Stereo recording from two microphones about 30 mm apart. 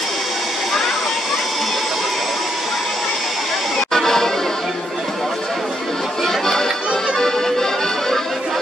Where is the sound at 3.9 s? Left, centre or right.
Centre.